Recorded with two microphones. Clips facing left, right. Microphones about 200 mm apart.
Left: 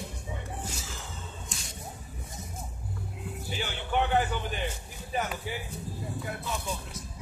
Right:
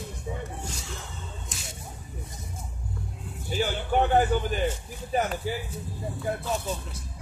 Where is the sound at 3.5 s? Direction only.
40° right (ahead or behind).